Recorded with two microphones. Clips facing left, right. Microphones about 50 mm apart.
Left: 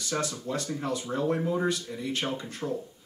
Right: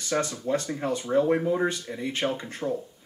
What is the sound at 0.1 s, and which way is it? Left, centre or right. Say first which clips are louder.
Speech: right 5 dB; right.